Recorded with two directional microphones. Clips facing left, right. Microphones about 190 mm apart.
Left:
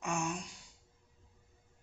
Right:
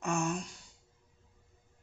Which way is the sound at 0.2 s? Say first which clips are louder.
Right 4 dB; 45° right (ahead or behind).